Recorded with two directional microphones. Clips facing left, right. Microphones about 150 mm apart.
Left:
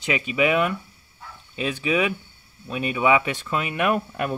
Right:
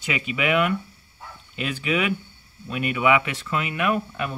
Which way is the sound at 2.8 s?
25° left (ahead or behind).